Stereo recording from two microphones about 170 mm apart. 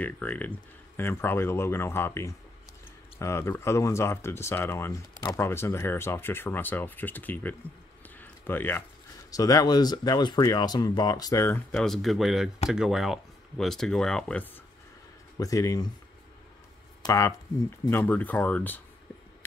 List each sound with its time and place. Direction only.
0.0 s speech: 10° left (ahead or behind)
8.2 s a sound: 10° left (ahead or behind)
9.3 s speech: 20° left (ahead or behind)
11.7 s speech: centre (ahead or behind)
15.3 s speech: 20° left (ahead or behind)
17.0 s speech: 20° left (ahead or behind)